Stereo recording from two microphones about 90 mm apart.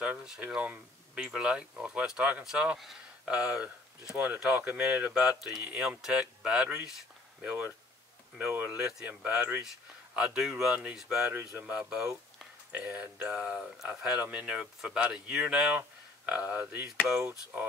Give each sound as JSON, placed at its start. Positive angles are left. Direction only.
{"t": 0.0, "sound": "speech", "side_deg": -15}
{"t": 11.2, "sound": "speech", "side_deg": -15}
{"t": 16.8, "sound": "speech", "side_deg": -5}